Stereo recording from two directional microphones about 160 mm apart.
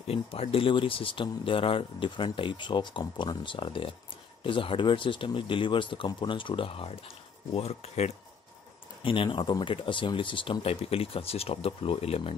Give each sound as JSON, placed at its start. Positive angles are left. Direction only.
{"t": 0.0, "sound": "speech", "side_deg": 35}